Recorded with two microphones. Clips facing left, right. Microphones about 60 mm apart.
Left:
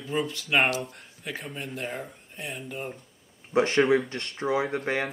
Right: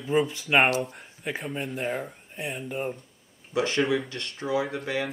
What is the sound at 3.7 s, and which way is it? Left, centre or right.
Speech, left.